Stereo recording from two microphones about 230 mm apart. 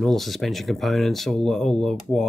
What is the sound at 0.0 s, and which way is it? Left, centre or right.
Speech, centre.